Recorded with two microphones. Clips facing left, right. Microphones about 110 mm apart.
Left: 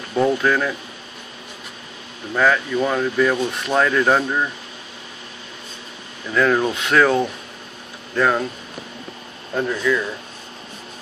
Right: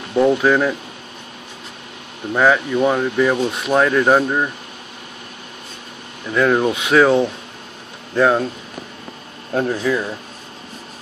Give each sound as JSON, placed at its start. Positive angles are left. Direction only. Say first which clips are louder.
{"t": 0.1, "sound": "speech", "louder": "right 4 dB", "side_deg": -15}
{"t": 2.3, "sound": "speech", "louder": "right 3 dB", "side_deg": -20}
{"t": 6.3, "sound": "speech", "louder": "right 2 dB", "side_deg": -10}
{"t": 9.5, "sound": "speech", "louder": "right 2 dB", "side_deg": -40}